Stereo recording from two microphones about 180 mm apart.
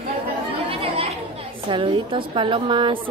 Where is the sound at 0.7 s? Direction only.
30° right (ahead or behind).